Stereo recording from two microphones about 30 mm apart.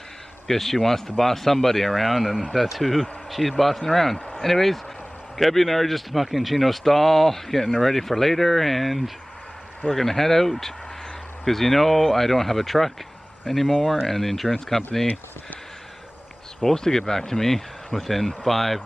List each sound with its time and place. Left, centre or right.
0.5 s speech: centre
16.7 s speech: centre